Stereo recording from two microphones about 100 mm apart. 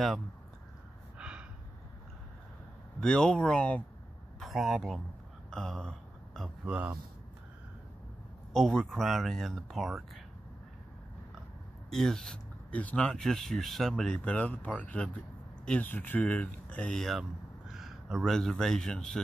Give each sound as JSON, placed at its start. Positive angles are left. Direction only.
{"t": 1.1, "sound": "snort", "side_deg": -10}
{"t": 3.0, "sound": "speech", "side_deg": 5}
{"t": 4.4, "sound": "a man's voice", "side_deg": 0}
{"t": 5.5, "sound": "a sound", "side_deg": 5}
{"t": 6.6, "sound": "a man's voice", "side_deg": -15}
{"t": 8.5, "sound": "speech", "side_deg": 5}
{"t": 11.9, "sound": "speech", "side_deg": 5}